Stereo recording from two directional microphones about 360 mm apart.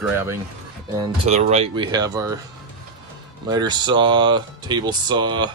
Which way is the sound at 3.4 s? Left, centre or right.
Centre.